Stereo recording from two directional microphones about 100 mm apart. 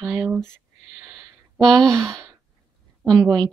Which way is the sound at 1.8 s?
5° left (ahead or behind).